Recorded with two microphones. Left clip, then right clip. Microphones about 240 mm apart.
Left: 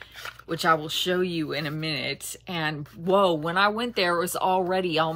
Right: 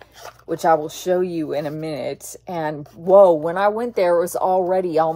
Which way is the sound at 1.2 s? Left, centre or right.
Centre.